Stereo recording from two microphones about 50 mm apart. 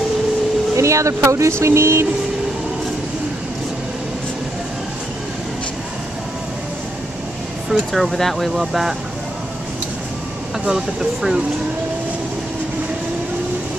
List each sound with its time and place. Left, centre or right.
0.7 s speech: right
1.6 s vehicle: right
7.9 s speech: centre
10.7 s speech: centre